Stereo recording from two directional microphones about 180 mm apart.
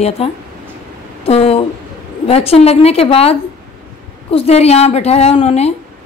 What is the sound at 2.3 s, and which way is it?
A woman's voice, 35° left (ahead or behind).